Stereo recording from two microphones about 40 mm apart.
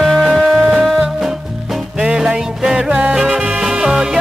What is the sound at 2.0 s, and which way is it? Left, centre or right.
Music, centre.